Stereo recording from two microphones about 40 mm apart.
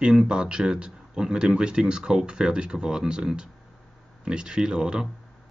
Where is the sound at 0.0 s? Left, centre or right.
Centre.